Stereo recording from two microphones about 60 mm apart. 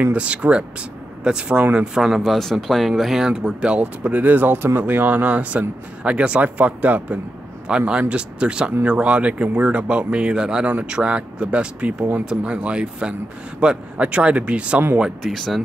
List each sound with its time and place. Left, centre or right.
0.1 s speech: right
2.0 s speech: centre
3.8 s speech: right; by 10.7 s centre
10.7 s speech: right
15.3 s speech: centre